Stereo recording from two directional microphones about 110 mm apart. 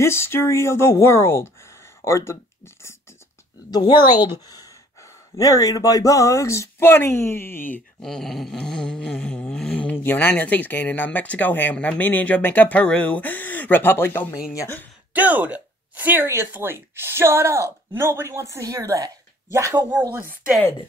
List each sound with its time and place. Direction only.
0.0 s speech: 20° left (ahead or behind)
3.7 s a woman's voice: 40° left (ahead or behind); by 7.8 s 20° left (ahead or behind)
8.0 s a sound: 5° left (ahead or behind); by 14.3 s 20° left (ahead or behind)
14.5 s speech: 30° left (ahead or behind)
15.1 s speech: 15° right (ahead or behind)
19.9 s speech: 15° right (ahead or behind)